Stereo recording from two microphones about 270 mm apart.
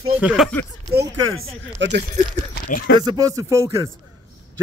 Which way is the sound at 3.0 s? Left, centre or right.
Centre.